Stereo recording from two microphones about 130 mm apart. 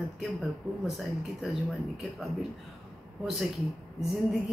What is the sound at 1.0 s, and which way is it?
Speech, centre (ahead or behind).